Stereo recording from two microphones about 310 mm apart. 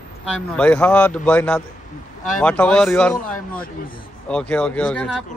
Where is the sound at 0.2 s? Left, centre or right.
Centre.